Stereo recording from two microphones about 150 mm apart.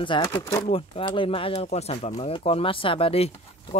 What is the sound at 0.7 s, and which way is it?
Speech, 40° left (ahead or behind).